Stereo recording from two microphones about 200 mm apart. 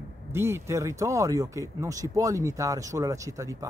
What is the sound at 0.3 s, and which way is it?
Speech, 10° right (ahead or behind).